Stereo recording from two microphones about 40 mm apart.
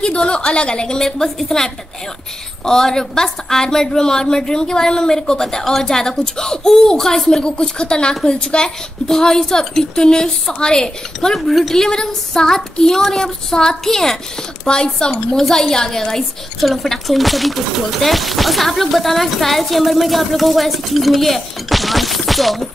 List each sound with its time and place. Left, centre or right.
0.0 s a woman's voice: left
1.0 s a woman's voice: centre
7.4 s a woman's voice: left
11.3 s speech: centre
11.7 s a woman's voice: centre
15.3 s a woman's voice: centre